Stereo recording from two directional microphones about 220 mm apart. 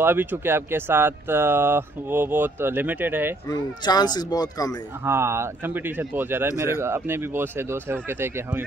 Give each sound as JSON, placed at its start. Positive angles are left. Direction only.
{"t": 0.0, "sound": "speech", "side_deg": -10}
{"t": 3.4, "sound": "speech", "side_deg": 20}
{"t": 5.0, "sound": "speech", "side_deg": -10}